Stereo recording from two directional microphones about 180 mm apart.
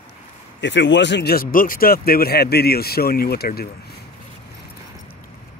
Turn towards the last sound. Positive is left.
turn(degrees=60)  # may be behind; listen again after turning